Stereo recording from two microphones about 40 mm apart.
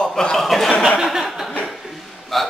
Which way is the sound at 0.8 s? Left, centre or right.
Centre.